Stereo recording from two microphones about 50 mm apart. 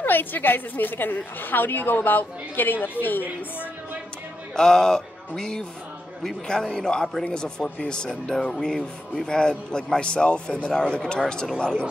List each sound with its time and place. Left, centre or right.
0.0 s a woman's voice: left
4.6 s speech: centre